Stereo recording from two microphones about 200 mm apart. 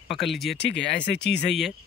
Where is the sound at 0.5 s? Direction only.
60° left (ahead or behind).